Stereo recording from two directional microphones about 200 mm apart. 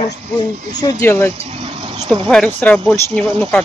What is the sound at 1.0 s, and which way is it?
Speech, 10° left (ahead or behind).